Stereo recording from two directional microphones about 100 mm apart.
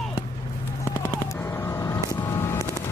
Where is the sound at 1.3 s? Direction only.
30° left (ahead or behind).